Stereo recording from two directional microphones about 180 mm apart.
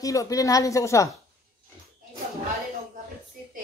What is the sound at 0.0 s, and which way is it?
A woman's voice, 20° left (ahead or behind).